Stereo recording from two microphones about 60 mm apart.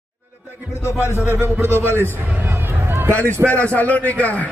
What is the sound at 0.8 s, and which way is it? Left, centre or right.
Speech, left.